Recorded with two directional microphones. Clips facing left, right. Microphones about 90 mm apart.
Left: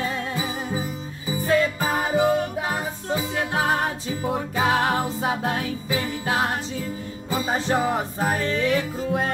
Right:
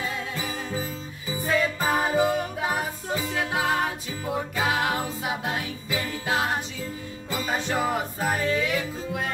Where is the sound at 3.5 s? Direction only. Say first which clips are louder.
Left 2 dB; 30° left (ahead or behind).